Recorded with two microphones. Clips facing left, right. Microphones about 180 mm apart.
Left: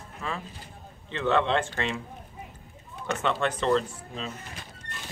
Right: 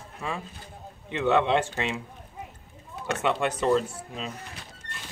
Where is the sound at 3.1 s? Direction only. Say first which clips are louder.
Right 1 dB; 10° right (ahead or behind).